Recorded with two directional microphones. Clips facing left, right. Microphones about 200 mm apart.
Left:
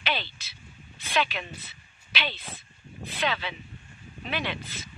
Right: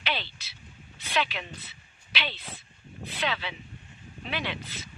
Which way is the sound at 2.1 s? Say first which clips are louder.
Left 2 dB; 45° left (ahead or behind).